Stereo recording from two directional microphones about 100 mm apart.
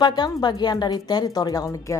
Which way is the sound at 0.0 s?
45° left (ahead or behind).